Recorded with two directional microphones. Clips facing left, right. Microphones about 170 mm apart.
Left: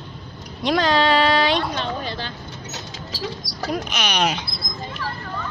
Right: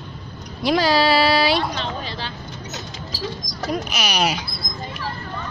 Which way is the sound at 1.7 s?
50° left (ahead or behind).